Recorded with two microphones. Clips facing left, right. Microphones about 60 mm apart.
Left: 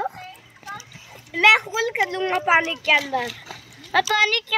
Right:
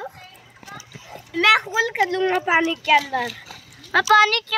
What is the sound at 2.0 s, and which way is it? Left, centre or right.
Speech, left.